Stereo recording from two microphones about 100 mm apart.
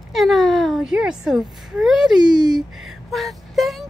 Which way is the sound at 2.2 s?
45° right (ahead or behind).